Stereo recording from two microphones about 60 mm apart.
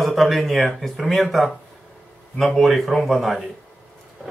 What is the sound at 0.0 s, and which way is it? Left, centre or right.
Speech, centre.